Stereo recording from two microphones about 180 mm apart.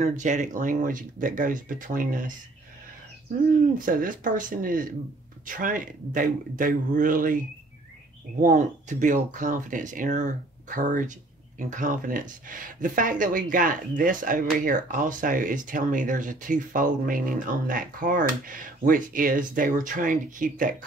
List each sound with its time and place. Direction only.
0.0 s speech: 45° right (ahead or behind)
3.7 s speech: 50° right (ahead or behind)
8.4 s speech: 45° right (ahead or behind)